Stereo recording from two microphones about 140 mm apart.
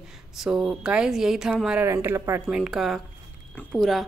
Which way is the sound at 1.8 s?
20° right (ahead or behind).